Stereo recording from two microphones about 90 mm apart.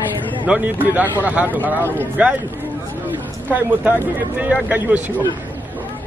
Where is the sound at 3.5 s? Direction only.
20° right (ahead or behind).